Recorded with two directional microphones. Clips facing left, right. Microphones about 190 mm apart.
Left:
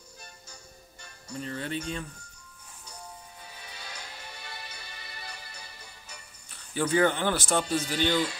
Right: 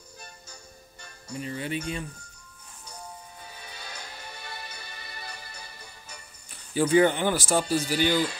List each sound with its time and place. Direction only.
1.3 s speech: 10° right (ahead or behind)
3.4 s music: 45° right (ahead or behind)
6.5 s speech: 15° right (ahead or behind)